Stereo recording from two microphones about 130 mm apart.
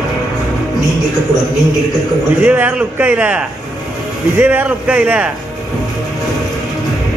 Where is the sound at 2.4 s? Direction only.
10° right (ahead or behind).